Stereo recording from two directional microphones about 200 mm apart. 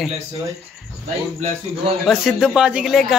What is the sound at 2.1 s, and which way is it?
Speech, centre (ahead or behind).